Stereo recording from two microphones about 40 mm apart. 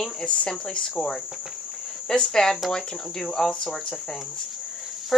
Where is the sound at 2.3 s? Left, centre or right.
Centre.